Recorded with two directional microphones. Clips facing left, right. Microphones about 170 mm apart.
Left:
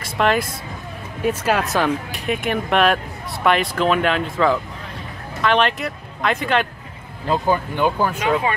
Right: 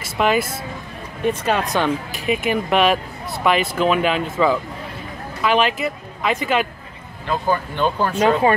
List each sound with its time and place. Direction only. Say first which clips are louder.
0.0 s speech: even; centre (ahead or behind)
7.4 s speech: even; 15° left (ahead or behind)